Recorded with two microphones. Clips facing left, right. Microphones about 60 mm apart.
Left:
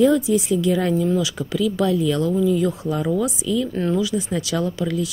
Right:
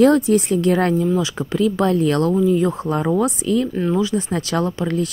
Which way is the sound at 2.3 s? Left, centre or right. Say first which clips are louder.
Right 2 dB; right.